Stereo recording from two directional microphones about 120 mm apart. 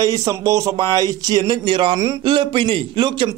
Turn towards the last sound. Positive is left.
turn(degrees=-40)  # may be behind; listen again after turning